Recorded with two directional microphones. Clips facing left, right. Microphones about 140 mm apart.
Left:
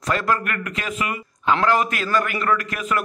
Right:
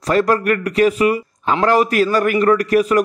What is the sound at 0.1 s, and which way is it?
A man's voice, 35° right (ahead or behind).